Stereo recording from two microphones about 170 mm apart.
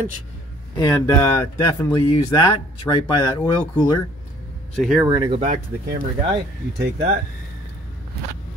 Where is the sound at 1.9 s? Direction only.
25° left (ahead or behind).